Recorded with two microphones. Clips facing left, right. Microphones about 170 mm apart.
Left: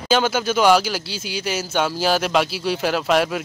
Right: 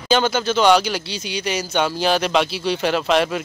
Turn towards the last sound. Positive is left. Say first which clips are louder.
# right 1 dB
turn(degrees=5)  # may be behind; listen again after turning